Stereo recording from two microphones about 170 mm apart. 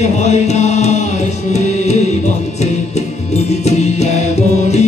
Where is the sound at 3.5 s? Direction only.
40° left (ahead or behind).